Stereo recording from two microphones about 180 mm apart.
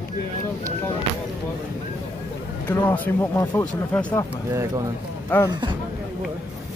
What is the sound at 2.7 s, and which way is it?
Speech, 15° left (ahead or behind).